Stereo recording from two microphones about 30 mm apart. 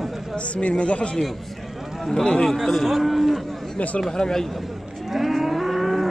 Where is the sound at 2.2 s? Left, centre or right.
Left.